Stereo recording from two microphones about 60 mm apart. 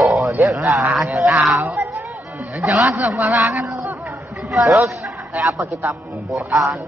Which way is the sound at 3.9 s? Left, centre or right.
Right.